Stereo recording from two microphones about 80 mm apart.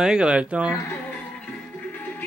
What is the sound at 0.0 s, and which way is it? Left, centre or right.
Speech, centre.